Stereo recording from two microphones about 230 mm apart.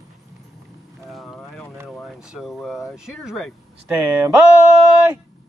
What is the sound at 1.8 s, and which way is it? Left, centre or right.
Speech, centre.